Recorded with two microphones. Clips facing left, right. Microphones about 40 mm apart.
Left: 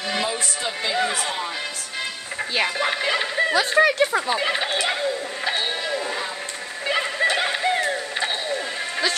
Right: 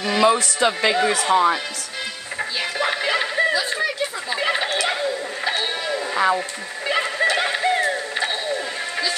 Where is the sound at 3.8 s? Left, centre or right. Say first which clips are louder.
Left 7 dB; left.